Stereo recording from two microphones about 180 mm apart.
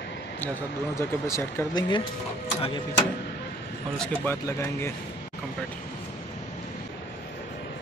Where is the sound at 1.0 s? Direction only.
15° left (ahead or behind).